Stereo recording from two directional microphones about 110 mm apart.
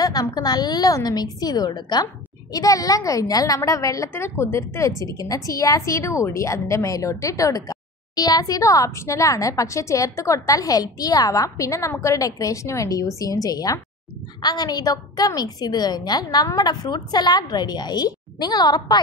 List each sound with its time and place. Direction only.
0.0 s a woman's voice: 35° left (ahead or behind)